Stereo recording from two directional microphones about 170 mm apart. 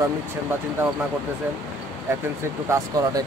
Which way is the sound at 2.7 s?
20° right (ahead or behind).